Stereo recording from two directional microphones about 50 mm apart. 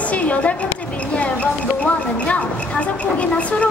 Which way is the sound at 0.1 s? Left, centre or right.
Left.